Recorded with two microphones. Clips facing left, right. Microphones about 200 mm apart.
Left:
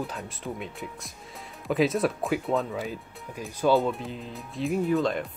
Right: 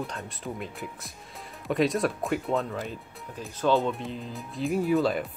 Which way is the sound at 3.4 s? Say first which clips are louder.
Left 2 dB; 10° left (ahead or behind).